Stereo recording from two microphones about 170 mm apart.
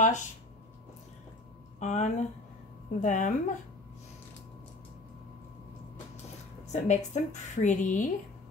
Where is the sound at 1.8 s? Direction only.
45° left (ahead or behind).